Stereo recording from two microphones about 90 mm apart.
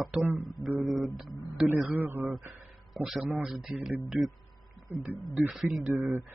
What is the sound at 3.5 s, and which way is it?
Speech, 5° right (ahead or behind).